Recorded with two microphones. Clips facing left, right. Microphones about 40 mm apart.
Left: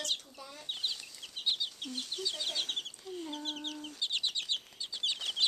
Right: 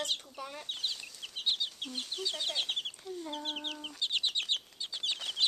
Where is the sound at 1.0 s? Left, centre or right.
Centre.